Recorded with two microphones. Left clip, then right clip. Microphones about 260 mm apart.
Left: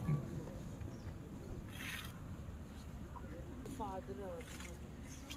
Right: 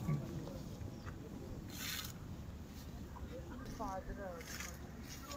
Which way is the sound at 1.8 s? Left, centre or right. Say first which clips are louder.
Right 2 dB; right.